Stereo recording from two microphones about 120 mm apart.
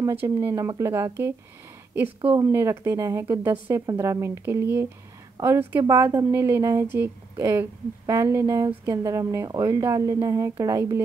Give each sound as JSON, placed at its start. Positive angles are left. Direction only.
{"t": 0.1, "sound": "speech", "side_deg": -15}
{"t": 2.3, "sound": "speech", "side_deg": -25}